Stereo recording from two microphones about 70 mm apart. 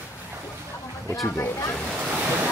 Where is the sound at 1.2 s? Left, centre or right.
Left.